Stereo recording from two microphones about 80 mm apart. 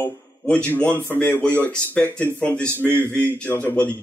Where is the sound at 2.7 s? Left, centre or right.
Right.